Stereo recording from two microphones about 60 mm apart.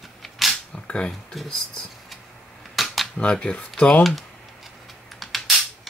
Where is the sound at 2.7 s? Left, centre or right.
Centre.